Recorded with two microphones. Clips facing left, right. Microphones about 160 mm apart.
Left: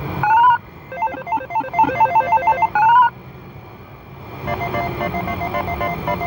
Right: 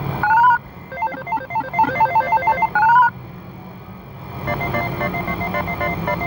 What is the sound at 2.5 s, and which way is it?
Telephone bell ringing, 15° left (ahead or behind).